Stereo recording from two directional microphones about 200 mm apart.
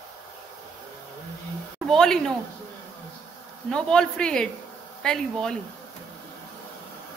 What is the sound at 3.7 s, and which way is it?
A woman's voice, 5° left (ahead or behind).